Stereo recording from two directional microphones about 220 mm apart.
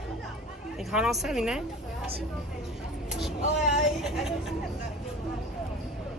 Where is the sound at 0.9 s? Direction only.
Centre (ahead or behind).